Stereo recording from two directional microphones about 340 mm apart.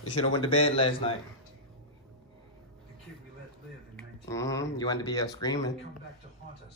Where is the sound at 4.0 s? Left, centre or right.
Centre.